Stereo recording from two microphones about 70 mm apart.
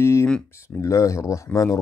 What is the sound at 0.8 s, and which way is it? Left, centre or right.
Speech, left.